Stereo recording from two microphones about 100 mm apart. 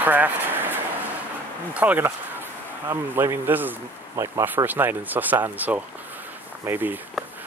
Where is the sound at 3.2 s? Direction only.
20° right (ahead or behind).